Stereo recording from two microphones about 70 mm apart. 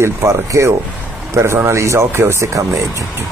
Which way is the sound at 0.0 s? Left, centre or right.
Right.